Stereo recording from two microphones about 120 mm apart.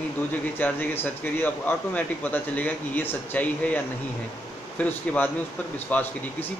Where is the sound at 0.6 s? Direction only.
15° left (ahead or behind).